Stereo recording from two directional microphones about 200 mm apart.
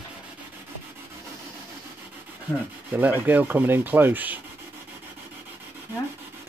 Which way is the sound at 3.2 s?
10° right (ahead or behind).